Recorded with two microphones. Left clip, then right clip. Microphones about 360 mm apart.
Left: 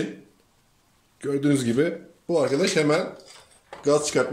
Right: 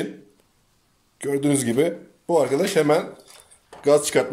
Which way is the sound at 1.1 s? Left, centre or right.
Centre.